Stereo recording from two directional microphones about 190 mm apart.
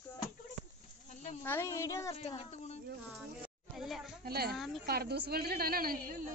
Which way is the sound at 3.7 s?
Centre (ahead or behind).